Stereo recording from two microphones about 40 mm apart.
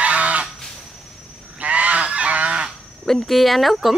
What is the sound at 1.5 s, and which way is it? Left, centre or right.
Goose, right.